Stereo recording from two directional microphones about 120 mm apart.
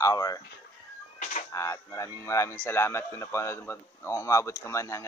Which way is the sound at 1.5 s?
25° left (ahead or behind).